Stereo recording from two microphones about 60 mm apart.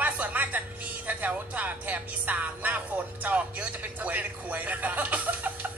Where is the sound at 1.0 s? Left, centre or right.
Right.